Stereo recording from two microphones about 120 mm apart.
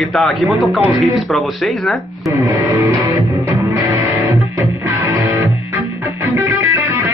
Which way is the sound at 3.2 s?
25° right (ahead or behind).